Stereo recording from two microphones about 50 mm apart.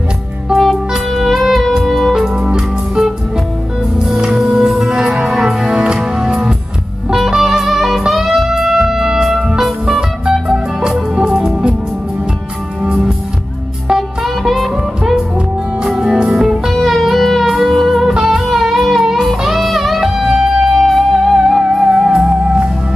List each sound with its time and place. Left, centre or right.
0.5 s music: centre
2.3 s music: centre
12.8 s music: centre
13.9 s music: centre
16.8 s music: centre